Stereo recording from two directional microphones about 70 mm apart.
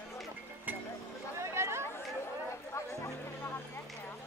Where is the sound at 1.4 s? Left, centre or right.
Right.